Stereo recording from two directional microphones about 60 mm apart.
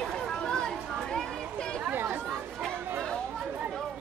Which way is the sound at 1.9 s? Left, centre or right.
Right.